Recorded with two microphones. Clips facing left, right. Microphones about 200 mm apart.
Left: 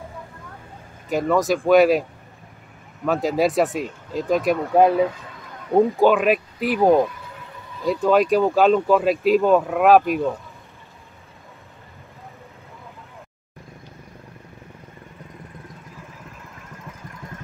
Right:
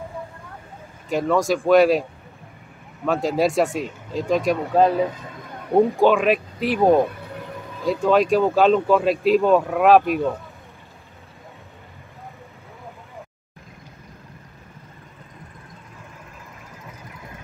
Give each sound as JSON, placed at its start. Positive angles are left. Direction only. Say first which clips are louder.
{"t": 1.0, "sound": "speech", "louder": "even", "side_deg": 0}
{"t": 3.1, "sound": "speech", "louder": "even", "side_deg": 0}
{"t": 4.8, "sound": "speech", "louder": "left 2 dB", "side_deg": 15}
{"t": 5.9, "sound": "speech", "louder": "even", "side_deg": 0}
{"t": 7.1, "sound": "a sound", "louder": "right 5 dB", "side_deg": -60}
{"t": 7.8, "sound": "speech", "louder": "even", "side_deg": 0}